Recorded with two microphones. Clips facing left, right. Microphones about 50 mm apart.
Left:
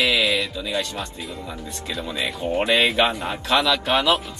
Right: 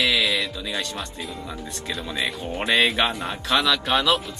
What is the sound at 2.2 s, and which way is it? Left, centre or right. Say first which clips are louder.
Speech: left 5 dB; centre.